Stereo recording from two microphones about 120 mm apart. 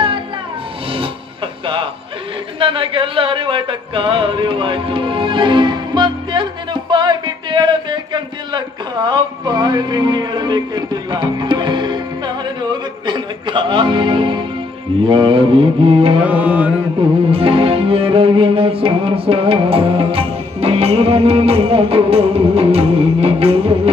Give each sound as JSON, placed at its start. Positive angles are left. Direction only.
{"t": 2.6, "sound": "speech", "side_deg": -45}
{"t": 13.0, "sound": "a man's voice", "side_deg": -40}
{"t": 15.0, "sound": "music", "side_deg": -45}
{"t": 16.3, "sound": "music", "side_deg": -15}
{"t": 17.3, "sound": "music", "side_deg": -50}